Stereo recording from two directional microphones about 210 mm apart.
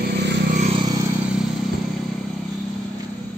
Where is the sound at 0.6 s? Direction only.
30° right (ahead or behind).